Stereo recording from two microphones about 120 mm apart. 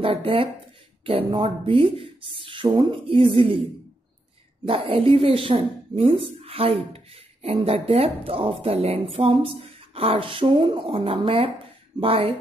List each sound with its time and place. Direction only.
0.0 s speech: 50° right (ahead or behind)
4.6 s speech: 50° right (ahead or behind)